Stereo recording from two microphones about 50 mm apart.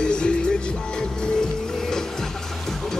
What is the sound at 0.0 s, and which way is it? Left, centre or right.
Music, centre.